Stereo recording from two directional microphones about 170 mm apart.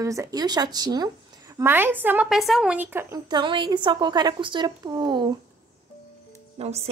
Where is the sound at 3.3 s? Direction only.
25° right (ahead or behind).